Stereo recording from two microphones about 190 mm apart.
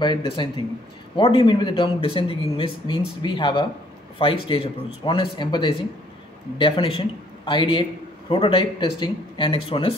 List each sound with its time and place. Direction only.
0.0 s speech: 25° left (ahead or behind)